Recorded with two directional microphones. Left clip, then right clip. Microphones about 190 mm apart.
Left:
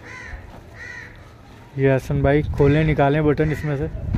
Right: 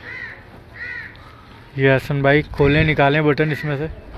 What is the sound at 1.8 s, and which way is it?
Speech, 10° left (ahead or behind).